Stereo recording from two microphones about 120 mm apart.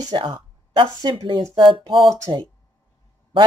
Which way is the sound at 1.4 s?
45° right (ahead or behind).